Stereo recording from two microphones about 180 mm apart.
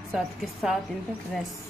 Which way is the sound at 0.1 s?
Centre (ahead or behind).